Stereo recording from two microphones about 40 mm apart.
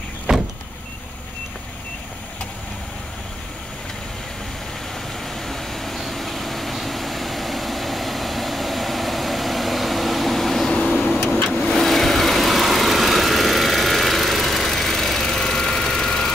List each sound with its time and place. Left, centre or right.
0.3 s vehicle: right
5.3 s vehicle: centre
10.7 s vehicle: left
11.6 s vehicle: centre